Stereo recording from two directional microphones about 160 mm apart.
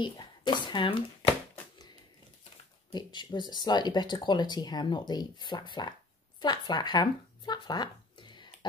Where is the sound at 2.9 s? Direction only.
25° left (ahead or behind).